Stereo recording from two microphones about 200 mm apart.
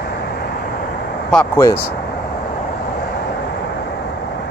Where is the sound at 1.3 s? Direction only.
10° left (ahead or behind).